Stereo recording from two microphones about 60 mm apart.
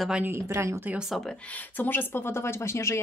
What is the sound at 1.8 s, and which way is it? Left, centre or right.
Speech, left.